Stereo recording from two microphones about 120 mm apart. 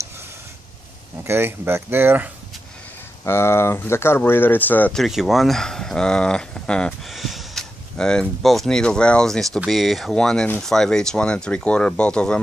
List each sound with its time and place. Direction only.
1.2 s speech: 20° right (ahead or behind)
3.3 s speech: 20° left (ahead or behind)
4.9 s speech: centre (ahead or behind)